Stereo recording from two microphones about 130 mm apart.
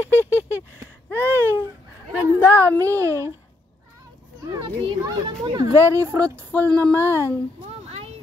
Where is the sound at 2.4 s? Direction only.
15° left (ahead or behind).